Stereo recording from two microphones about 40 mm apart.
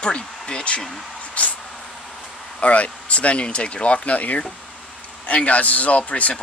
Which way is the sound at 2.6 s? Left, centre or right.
Left.